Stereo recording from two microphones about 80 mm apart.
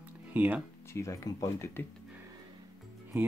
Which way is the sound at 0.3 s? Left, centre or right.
Right.